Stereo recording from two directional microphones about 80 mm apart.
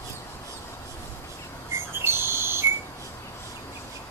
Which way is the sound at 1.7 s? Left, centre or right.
Right.